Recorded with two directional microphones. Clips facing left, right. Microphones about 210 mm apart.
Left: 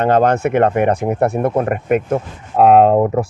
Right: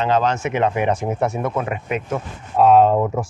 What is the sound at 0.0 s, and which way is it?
Speech, 55° left (ahead or behind).